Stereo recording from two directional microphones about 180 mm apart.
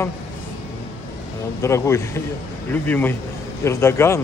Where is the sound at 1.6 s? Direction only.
15° left (ahead or behind).